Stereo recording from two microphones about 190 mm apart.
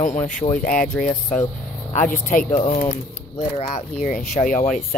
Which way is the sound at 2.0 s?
45° left (ahead or behind).